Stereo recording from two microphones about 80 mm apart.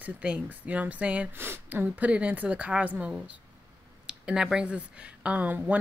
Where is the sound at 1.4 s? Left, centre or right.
Right.